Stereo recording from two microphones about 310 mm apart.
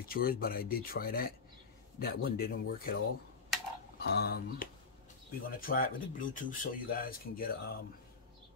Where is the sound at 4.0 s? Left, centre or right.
Left.